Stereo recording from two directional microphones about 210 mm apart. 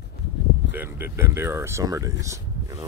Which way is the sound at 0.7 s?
10° right (ahead or behind).